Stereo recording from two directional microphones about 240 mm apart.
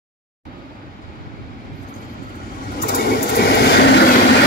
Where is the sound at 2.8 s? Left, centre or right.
Left.